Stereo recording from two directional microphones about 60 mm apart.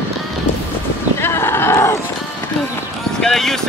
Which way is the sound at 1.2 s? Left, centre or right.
Left.